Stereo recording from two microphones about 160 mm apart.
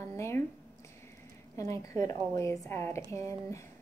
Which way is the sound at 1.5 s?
20° left (ahead or behind).